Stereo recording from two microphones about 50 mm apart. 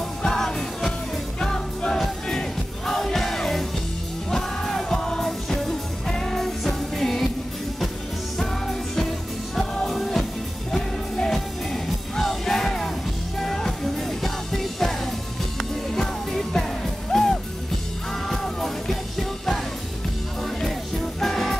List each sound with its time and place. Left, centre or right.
0.2 s music: centre
8.4 s music: centre
21.2 s music: centre